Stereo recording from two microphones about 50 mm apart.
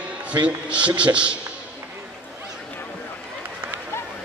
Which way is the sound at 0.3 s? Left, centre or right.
Right.